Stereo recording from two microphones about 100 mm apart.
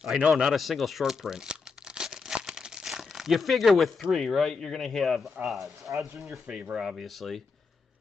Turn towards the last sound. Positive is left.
turn(degrees=0)  # may be behind; listen again after turning